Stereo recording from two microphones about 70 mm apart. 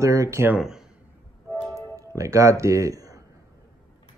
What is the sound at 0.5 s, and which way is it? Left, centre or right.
Speech, centre.